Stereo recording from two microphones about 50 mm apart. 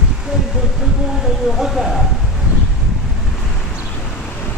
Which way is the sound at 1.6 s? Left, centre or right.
Centre.